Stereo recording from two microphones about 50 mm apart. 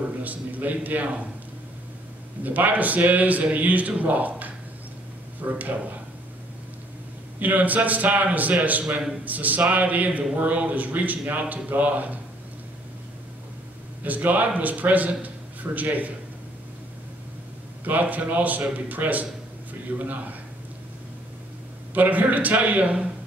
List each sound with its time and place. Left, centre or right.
0.2 s a man's voice: right
2.4 s a man's voice: right
7.3 s a man's voice: right
14.0 s a man's voice: right
17.8 s a man's voice: right
21.9 s a man's voice: right